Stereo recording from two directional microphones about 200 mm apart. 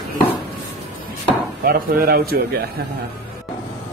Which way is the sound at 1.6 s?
50° right (ahead or behind).